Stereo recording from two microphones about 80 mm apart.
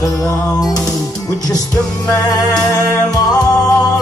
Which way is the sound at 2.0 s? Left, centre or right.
Left.